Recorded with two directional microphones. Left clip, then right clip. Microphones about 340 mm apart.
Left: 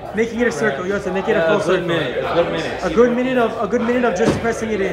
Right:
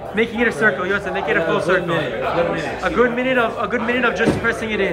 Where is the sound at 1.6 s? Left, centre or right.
Centre.